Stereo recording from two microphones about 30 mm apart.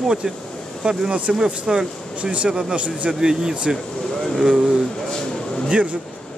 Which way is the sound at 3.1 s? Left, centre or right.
Right.